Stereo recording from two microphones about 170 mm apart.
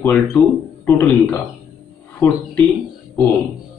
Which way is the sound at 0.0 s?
15° left (ahead or behind).